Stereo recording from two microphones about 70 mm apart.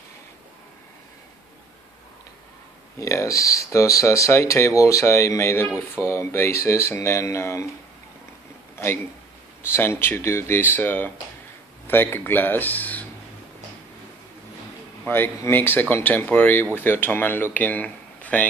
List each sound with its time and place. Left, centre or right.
3.0 s speech: left
9.7 s speech: left
15.0 s speech: left